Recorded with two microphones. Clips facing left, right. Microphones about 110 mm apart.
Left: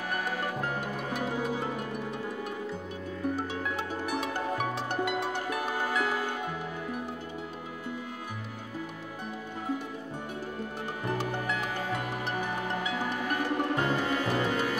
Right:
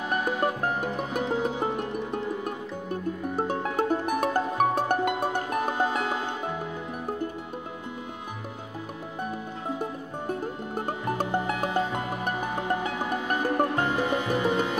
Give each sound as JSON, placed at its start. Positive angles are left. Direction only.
{"t": 0.1, "sound": "music", "side_deg": -20}
{"t": 2.4, "sound": "music", "side_deg": -50}
{"t": 5.6, "sound": "music", "side_deg": -20}
{"t": 11.7, "sound": "music", "side_deg": -20}